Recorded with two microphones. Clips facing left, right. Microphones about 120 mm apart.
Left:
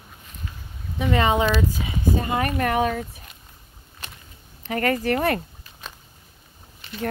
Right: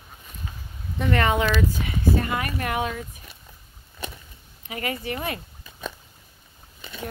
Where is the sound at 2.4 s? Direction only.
40° left (ahead or behind).